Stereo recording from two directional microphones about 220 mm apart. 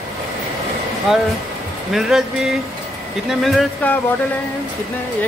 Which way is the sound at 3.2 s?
Centre (ahead or behind).